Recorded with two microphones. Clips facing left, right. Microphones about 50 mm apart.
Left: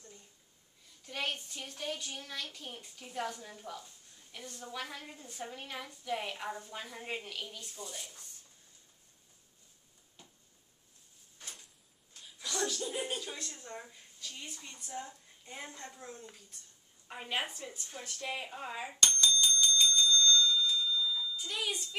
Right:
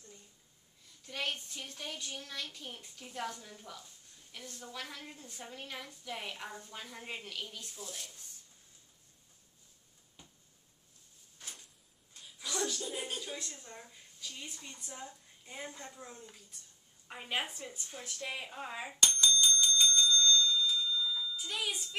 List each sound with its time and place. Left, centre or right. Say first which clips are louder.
1.0 s a woman's voice: left 1 dB; centre
12.3 s a sound: left 1 dB; centre
12.8 s music: left 3 dB; centre
13.7 s speech: left 5 dB; centre
14.2 s a woman's voice: even; centre
19.4 s bicycle bell: even; centre